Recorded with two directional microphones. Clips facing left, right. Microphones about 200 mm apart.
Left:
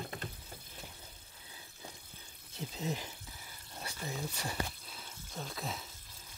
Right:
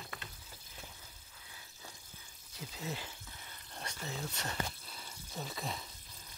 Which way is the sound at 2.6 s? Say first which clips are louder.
Left 4 dB; 20° left (ahead or behind).